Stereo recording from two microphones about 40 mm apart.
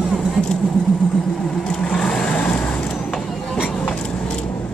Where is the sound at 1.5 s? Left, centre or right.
Centre.